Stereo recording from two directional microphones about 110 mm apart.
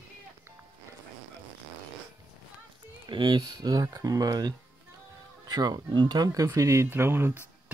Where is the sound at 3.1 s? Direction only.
45° right (ahead or behind).